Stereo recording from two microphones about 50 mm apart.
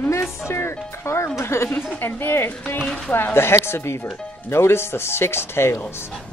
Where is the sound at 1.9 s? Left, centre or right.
Left.